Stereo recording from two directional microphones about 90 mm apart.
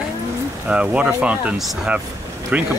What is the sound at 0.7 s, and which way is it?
Speech, 15° right (ahead or behind).